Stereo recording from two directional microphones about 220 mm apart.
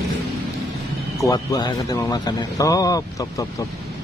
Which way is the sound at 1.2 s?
15° left (ahead or behind).